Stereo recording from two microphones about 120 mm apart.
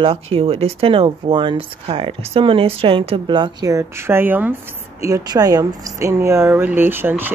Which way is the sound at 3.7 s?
25° right (ahead or behind).